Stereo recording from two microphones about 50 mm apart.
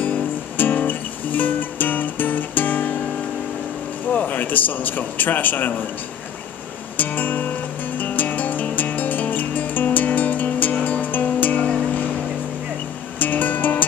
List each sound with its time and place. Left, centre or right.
0.6 s music: left
4.1 s a man's voice: left
7.0 s music: left
13.2 s music: left